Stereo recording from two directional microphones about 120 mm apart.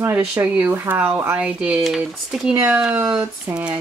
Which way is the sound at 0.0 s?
15° right (ahead or behind).